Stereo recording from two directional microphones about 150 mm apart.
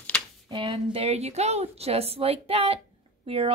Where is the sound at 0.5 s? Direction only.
35° right (ahead or behind).